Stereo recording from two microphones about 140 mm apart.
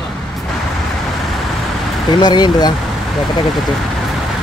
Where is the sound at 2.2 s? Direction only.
30° left (ahead or behind).